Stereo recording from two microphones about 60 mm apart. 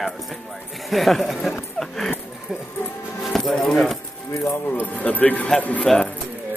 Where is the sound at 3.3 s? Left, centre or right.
Centre.